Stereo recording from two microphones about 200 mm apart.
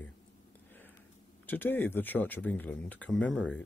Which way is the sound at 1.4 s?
10° left (ahead or behind).